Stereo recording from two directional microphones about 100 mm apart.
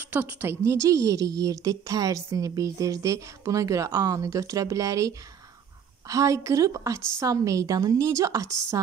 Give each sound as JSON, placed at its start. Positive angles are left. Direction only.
{"t": 0.0, "sound": "a woman's voice", "side_deg": -20}
{"t": 0.8, "sound": "a woman's voice", "side_deg": -35}